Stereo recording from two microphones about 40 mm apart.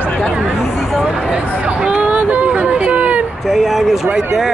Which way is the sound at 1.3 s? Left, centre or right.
Right.